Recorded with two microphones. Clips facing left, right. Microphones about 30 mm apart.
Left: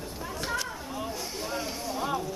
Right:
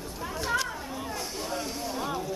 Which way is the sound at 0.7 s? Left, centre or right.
Centre.